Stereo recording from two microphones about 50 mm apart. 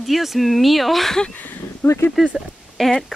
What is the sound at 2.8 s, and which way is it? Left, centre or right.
Speech, centre.